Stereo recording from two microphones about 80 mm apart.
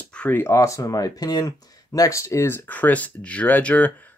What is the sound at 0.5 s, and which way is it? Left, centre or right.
Speech, left.